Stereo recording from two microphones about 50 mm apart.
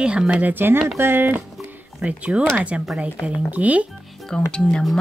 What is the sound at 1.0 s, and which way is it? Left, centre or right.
Speech, right.